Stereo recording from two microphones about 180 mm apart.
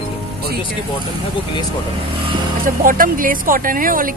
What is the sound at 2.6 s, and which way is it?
Speech, 50° right (ahead or behind).